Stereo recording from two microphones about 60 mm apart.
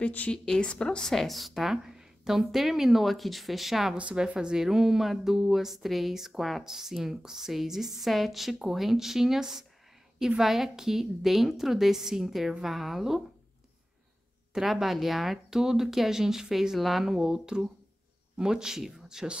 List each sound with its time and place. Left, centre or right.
0.0 s a woman's voice: left
0.3 s speech: centre
3.9 s speech: centre
14.5 s speech: centre